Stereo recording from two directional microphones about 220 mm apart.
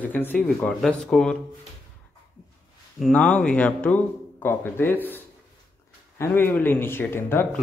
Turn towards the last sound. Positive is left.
turn(degrees=10)  # may be behind; listen again after turning